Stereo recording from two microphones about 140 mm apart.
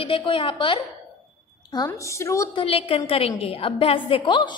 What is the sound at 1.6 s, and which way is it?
Speech, 30° left (ahead or behind).